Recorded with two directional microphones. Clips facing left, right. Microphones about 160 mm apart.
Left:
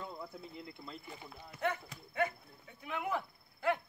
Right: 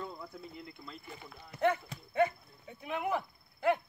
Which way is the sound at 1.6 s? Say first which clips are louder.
Right 6 dB; 30° right (ahead or behind).